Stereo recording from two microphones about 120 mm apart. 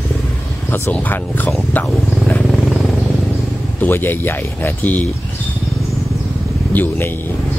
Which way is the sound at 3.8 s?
15° left (ahead or behind).